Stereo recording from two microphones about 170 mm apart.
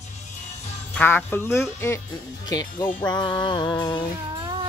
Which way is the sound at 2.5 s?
20° left (ahead or behind).